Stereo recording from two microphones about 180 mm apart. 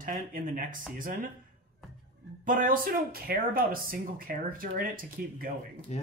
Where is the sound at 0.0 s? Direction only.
50° right (ahead or behind).